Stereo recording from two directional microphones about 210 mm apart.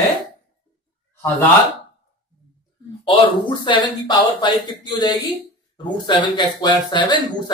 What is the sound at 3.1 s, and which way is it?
Speech, 25° left (ahead or behind).